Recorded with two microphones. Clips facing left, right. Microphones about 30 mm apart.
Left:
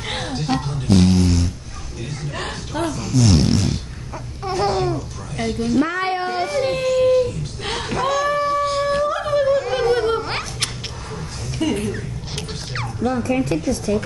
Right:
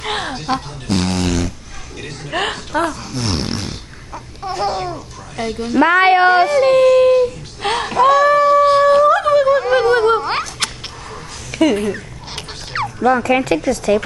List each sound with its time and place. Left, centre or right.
0.0 s a sound: centre
0.8 s a sound: right
2.7 s speech: right
4.1 s babbling: centre
5.3 s a woman's voice: centre
5.8 s a woman's voice: right
6.6 s baby cry: right
7.9 s speech: centre
8.2 s howl: right
9.0 s a sound: right
9.6 s music: right
10.6 s cat: right
11.7 s a sound: right
13.1 s speech: right